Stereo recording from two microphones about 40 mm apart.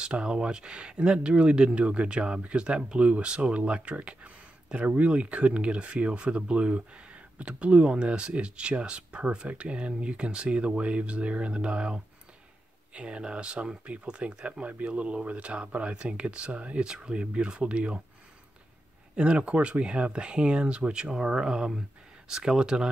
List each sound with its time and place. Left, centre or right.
0.0 s speech: right
19.1 s speech: right